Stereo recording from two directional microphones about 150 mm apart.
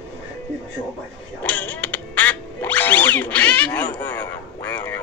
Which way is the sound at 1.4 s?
10° left (ahead or behind).